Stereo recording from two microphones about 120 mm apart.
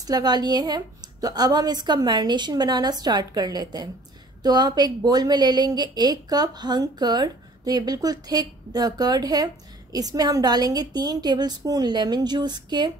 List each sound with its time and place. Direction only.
0.0 s a woman's voice: 35° right (ahead or behind)